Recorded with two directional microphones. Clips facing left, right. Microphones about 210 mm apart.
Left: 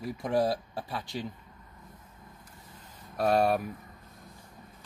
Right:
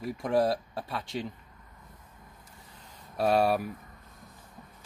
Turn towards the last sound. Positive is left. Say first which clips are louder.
# even
turn(degrees=-5)  # may be behind; listen again after turning